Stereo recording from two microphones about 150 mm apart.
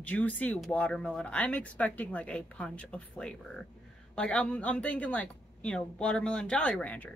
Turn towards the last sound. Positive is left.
turn(degrees=10)  # may be behind; listen again after turning